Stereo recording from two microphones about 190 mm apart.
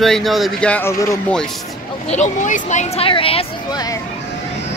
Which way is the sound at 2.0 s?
40° left (ahead or behind).